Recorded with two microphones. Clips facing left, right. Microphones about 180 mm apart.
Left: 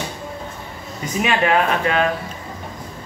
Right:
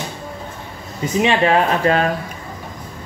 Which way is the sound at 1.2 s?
30° right (ahead or behind).